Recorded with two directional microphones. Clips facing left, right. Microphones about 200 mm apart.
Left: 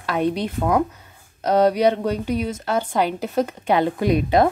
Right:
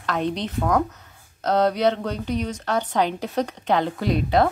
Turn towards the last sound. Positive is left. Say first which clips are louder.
# left 3 dB
turn(degrees=15)  # may be behind; listen again after turning